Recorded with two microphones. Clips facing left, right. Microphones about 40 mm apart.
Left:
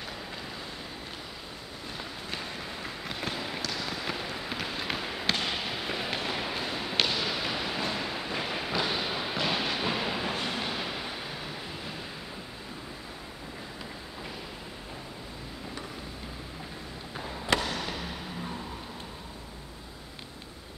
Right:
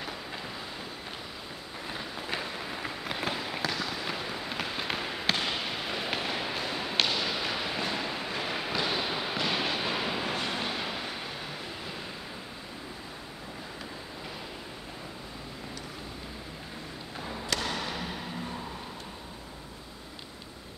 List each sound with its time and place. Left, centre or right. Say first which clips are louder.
1.9 s a sound: right 3 dB; centre
3.7 s fireworks: even; centre
17.6 s basketball bounce: even; centre